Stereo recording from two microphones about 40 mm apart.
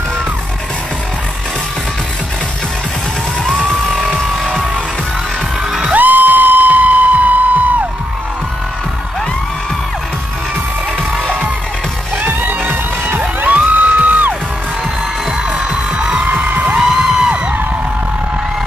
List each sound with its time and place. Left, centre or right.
3.4 s music: centre
5.9 s music: right
12.2 s music: right
13.4 s music: right
16.3 s music: right
16.7 s music: centre